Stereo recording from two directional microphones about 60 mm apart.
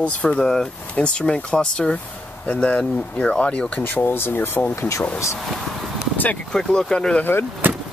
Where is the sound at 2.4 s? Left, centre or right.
Left.